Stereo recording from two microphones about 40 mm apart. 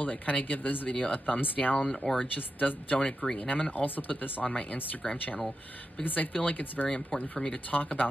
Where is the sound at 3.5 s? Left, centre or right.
Left.